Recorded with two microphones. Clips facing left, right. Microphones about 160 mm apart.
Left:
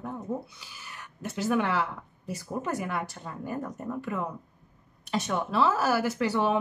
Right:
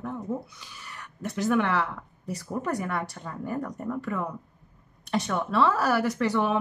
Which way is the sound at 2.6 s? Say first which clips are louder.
Right 2 dB; 25° left (ahead or behind).